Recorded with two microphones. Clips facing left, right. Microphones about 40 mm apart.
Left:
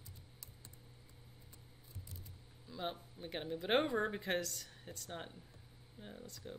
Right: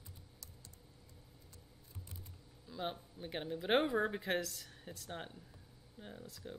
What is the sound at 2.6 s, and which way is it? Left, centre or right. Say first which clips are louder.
Speech: right 1 dB; centre.